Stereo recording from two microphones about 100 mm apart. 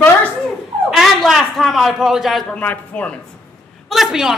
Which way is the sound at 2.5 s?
15° left (ahead or behind).